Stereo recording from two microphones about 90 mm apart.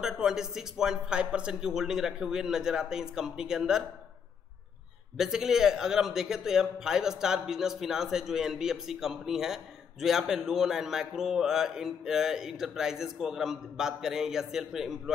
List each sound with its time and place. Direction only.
0.0 s a man's voice: 5° right (ahead or behind)
5.1 s a man's voice: 5° right (ahead or behind)